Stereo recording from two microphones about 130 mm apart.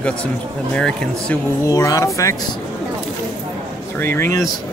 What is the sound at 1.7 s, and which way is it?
Speech, 25° left (ahead or behind).